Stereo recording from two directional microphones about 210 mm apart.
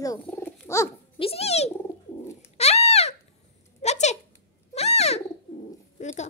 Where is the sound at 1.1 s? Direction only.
25° left (ahead or behind).